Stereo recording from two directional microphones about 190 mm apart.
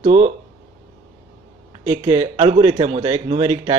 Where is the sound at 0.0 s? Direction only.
40° right (ahead or behind).